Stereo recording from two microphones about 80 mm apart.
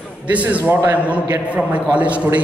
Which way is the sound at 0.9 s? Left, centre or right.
Centre.